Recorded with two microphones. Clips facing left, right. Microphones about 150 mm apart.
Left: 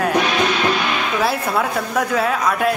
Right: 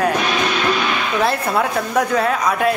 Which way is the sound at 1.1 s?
5° left (ahead or behind).